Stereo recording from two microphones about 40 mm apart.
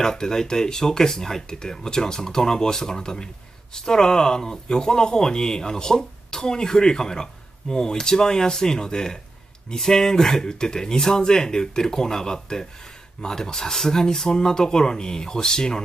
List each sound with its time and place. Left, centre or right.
0.0 s speech: centre